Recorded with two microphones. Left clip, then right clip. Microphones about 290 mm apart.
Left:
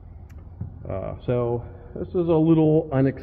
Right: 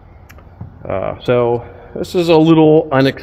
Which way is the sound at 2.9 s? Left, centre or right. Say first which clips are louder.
Right 10 dB; right.